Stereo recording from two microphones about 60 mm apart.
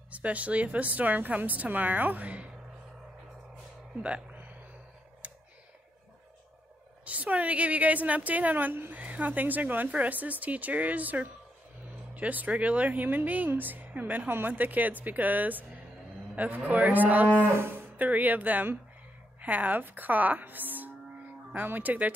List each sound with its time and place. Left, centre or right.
0.1 s speech: right
3.9 s a sound: centre
5.2 s computer keyboard: right
7.1 s speech: right
17.4 s cattle: right
18.0 s speech: right